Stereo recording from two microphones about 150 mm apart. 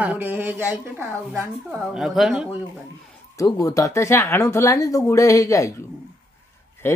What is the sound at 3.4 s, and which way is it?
Speech, 20° left (ahead or behind).